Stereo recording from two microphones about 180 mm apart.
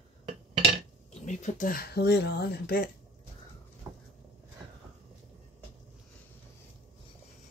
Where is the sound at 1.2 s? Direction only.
45° left (ahead or behind); by 2.9 s 60° left (ahead or behind).